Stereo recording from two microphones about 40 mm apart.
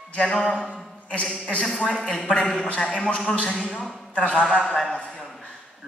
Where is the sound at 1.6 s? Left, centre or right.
Centre.